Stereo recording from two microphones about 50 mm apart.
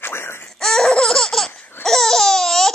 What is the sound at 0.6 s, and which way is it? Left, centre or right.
Laughter, centre.